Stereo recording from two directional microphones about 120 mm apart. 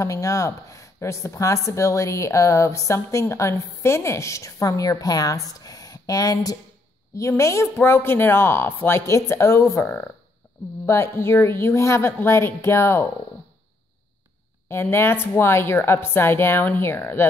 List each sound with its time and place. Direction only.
0.0 s speech: 25° left (ahead or behind)
14.7 s speech: 20° left (ahead or behind)